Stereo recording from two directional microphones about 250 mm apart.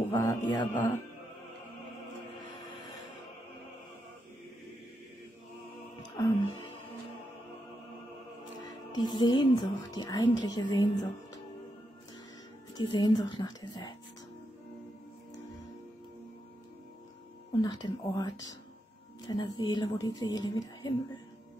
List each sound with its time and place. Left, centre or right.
0.1 s a man's voice: centre
6.1 s a woman's voice: centre
8.9 s a woman's voice: centre
12.7 s a woman's voice: centre
17.5 s a woman's voice: centre